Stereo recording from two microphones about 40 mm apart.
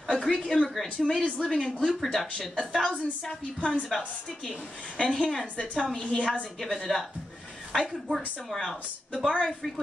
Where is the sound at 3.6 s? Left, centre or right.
Left.